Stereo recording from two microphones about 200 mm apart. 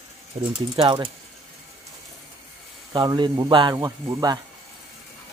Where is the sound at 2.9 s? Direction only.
20° right (ahead or behind).